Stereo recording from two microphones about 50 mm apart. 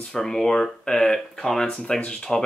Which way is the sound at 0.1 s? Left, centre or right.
Centre.